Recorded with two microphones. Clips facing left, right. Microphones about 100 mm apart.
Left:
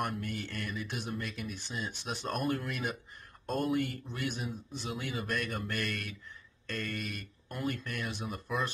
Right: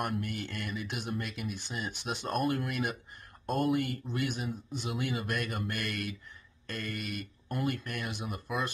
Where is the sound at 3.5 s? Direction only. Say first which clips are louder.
Right 2 dB; 10° right (ahead or behind).